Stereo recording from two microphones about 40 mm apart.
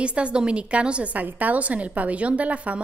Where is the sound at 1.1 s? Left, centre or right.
Right.